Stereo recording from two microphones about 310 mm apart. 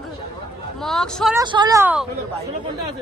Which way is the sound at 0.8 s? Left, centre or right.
Centre.